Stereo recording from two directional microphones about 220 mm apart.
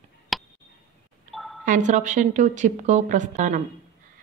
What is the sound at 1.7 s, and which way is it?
A woman's voice, 35° right (ahead or behind).